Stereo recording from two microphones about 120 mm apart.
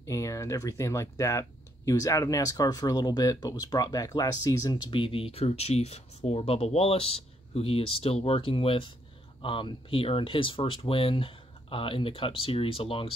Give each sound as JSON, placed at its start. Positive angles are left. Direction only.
{"t": 0.0, "sound": "speech", "side_deg": 25}
{"t": 5.0, "sound": "speech", "side_deg": 50}